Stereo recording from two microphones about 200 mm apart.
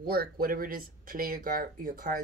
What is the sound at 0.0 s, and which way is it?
Speech, 50° right (ahead or behind).